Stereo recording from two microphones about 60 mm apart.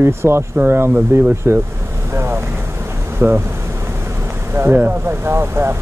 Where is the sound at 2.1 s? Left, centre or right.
Right.